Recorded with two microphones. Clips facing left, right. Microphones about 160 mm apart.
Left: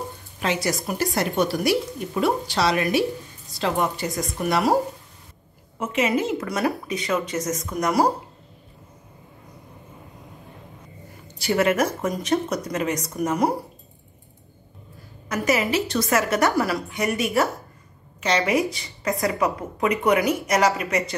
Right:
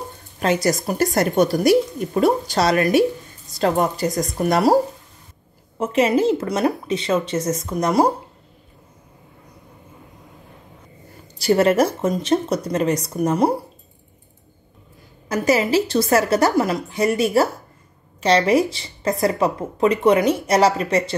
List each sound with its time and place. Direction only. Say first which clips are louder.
0.4 s a woman's voice: right 5 dB; 45° right (ahead or behind)
5.8 s speech: right 5 dB; 35° right (ahead or behind)
11.3 s speech: right 5 dB; 35° right (ahead or behind)
15.2 s speech: right 4 dB; 30° right (ahead or behind)